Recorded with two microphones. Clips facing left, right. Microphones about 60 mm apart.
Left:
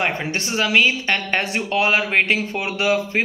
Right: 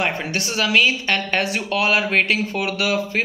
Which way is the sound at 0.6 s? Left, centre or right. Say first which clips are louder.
Even; left.